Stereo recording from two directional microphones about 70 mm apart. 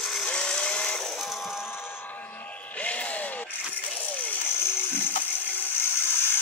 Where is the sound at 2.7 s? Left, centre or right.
Centre.